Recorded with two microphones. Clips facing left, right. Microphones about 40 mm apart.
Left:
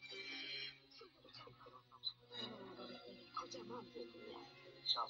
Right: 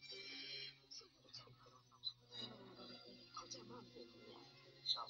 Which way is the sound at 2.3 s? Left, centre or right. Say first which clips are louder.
Left 4 dB; centre.